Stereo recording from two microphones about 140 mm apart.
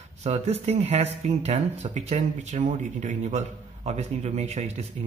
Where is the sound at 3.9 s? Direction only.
50° right (ahead or behind).